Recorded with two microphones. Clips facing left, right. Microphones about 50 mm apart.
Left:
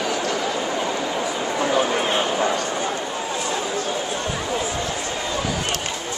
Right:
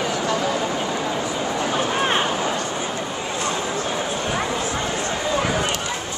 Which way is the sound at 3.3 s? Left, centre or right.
Right.